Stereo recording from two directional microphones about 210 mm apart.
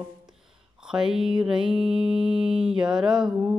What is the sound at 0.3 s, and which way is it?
Mantra, 5° right (ahead or behind).